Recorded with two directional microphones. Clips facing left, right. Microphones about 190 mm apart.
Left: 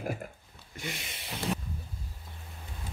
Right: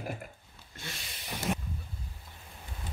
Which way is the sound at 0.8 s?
20° left (ahead or behind).